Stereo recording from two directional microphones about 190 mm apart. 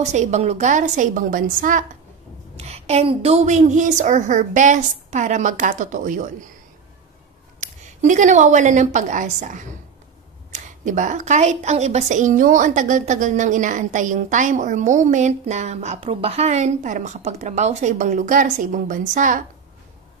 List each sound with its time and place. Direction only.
0.0 s a woman's voice: 35° right (ahead or behind)
2.5 s a woman's voice: 35° right (ahead or behind)
7.6 s a woman's voice: 40° right (ahead or behind)